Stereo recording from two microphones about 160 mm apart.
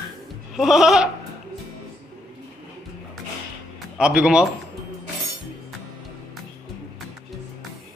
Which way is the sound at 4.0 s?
5° right (ahead or behind).